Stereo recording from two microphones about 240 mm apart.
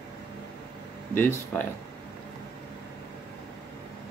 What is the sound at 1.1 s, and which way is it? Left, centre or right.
Speech, centre.